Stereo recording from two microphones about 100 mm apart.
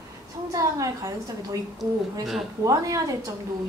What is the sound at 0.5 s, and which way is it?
A woman's voice, 35° right (ahead or behind).